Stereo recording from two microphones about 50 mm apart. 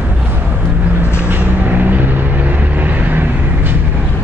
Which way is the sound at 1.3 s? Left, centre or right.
Right.